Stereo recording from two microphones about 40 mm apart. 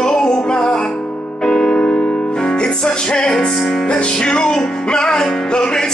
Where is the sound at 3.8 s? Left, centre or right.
Left.